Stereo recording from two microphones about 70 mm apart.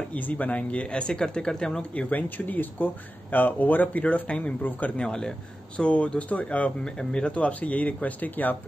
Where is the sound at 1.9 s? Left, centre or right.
Centre.